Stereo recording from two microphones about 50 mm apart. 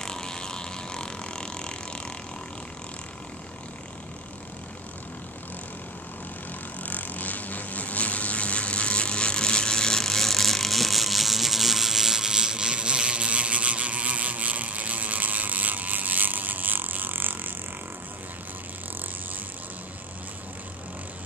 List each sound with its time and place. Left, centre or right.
0.0 s vehicle: centre
6.8 s vehicle: left; by 17.6 s right